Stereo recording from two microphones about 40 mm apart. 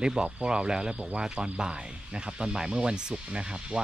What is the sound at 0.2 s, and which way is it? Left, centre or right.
Speech, right.